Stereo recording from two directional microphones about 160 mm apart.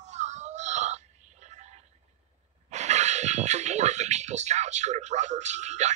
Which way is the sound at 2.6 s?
45° right (ahead or behind).